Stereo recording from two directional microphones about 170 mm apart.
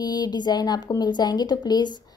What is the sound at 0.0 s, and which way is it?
A woman's voice, 25° left (ahead or behind).